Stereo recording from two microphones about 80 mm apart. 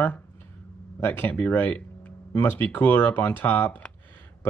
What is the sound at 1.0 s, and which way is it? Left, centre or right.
Speech, left.